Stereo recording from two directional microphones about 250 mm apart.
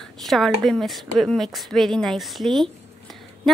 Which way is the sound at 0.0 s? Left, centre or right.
Centre.